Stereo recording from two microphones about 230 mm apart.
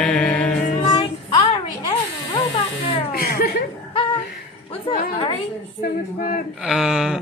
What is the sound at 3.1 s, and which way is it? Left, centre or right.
Chuckle, left.